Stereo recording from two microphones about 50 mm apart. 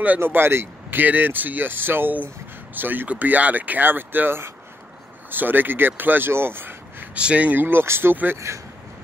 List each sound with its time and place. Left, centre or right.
0.2 s speech: right
7.2 s speech: right
7.6 s speech: right
8.5 s speech: right